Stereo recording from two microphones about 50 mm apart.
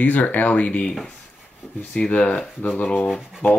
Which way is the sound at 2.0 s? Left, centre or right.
Left.